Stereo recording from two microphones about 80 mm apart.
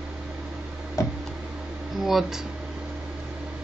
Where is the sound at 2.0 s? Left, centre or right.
Centre.